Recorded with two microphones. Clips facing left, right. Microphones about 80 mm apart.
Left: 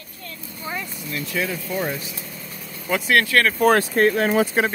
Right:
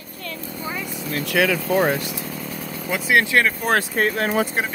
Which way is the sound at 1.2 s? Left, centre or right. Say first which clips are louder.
Right 7 dB; right.